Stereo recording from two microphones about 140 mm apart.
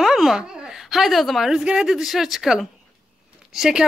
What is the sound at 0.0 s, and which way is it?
Speech, centre (ahead or behind).